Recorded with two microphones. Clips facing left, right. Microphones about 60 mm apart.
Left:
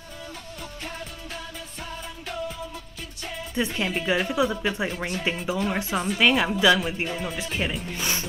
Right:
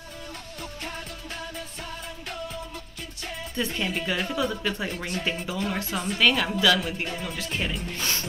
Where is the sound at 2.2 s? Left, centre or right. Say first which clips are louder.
Left 4 dB; centre.